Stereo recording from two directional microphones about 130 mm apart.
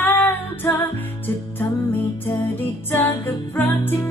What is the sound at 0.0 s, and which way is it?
Music, 15° left (ahead or behind).